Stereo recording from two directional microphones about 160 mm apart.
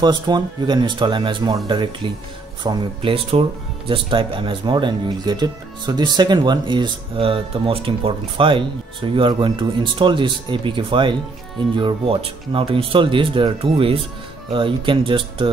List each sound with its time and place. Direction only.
0.0 s speech: 25° right (ahead or behind)